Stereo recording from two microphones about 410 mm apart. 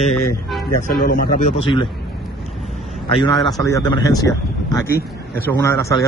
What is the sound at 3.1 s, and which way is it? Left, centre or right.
A man's voice, centre.